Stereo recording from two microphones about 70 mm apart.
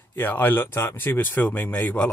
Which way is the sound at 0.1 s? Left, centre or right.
Left.